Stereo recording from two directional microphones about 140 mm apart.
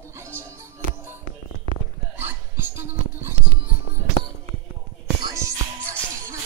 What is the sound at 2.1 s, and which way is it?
Music, 15° right (ahead or behind).